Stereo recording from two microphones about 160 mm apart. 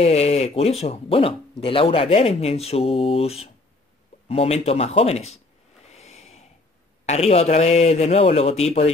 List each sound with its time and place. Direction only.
0.0 s speech: 40° left (ahead or behind)
5.9 s a sound: 45° left (ahead or behind)
7.1 s speech: 40° left (ahead or behind)